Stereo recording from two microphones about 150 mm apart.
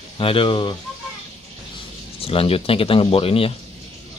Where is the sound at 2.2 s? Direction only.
40° left (ahead or behind).